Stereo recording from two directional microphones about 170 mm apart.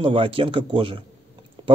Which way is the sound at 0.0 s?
30° right (ahead or behind).